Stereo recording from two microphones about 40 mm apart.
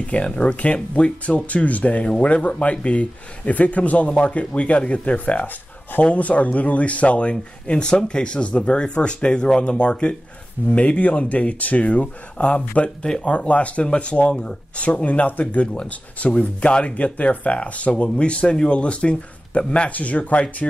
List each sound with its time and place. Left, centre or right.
0.1 s speech: left
19.9 s speech: left